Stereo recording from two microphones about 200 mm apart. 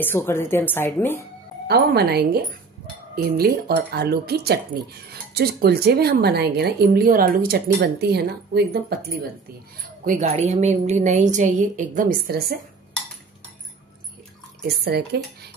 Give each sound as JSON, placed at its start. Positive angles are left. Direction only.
{"t": 0.0, "sound": "speech", "side_deg": 10}
{"t": 1.7, "sound": "speech", "side_deg": -55}
{"t": 10.0, "sound": "a woman's voice", "side_deg": -35}
{"t": 14.7, "sound": "speech", "side_deg": -55}